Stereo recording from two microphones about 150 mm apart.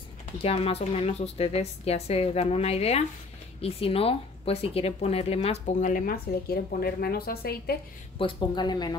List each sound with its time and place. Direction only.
0.4 s speech: 40° left (ahead or behind); by 7.7 s 90° left
8.2 s speech: 35° left (ahead or behind)